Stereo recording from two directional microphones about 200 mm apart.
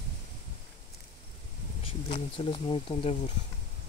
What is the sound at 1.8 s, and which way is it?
Speech, 25° left (ahead or behind).